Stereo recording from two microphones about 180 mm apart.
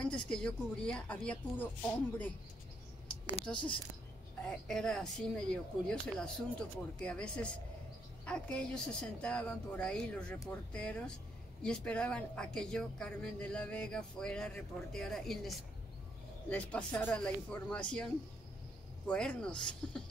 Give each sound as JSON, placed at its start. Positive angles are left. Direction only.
{"t": 0.0, "sound": "speech", "side_deg": 5}
{"t": 3.5, "sound": "speech", "side_deg": 25}
{"t": 4.5, "sound": "speech", "side_deg": 5}
{"t": 19.0, "sound": "speech", "side_deg": 5}